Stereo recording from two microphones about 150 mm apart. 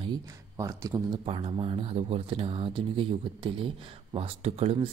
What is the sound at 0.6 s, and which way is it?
Speech, 20° right (ahead or behind).